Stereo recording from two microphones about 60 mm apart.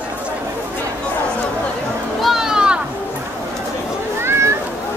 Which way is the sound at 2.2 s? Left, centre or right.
Centre.